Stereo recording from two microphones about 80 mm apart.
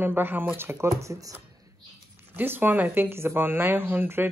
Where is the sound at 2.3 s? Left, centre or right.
Right.